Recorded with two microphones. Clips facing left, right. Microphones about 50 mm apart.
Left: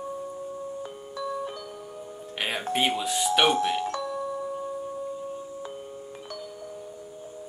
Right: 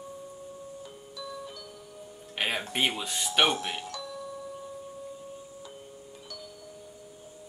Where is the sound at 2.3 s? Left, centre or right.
Centre.